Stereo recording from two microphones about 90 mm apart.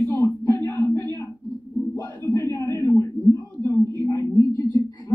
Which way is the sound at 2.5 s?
30° left (ahead or behind).